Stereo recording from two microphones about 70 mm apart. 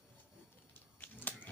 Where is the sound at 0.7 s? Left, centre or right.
Left.